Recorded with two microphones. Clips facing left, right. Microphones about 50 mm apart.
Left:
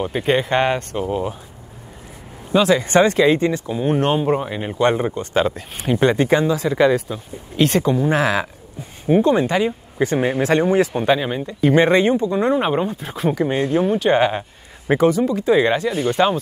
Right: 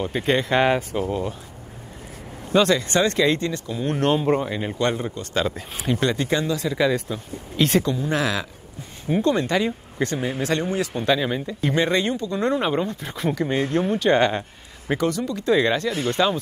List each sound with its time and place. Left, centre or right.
0.0 s speech: centre
2.5 s speech: centre
2.8 s speech: left
3.8 s speech: centre
6.8 s speech: centre
8.1 s speech: left
10.1 s speech: left
10.5 s speech: left
12.4 s speech: centre
14.9 s speech: left
16.2 s speech: left